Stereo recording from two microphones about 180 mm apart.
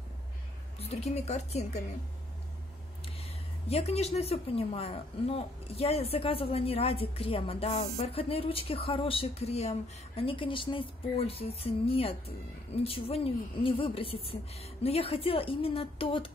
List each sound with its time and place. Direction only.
0.7 s speech: 35° left (ahead or behind)
3.1 s speech: 35° left (ahead or behind)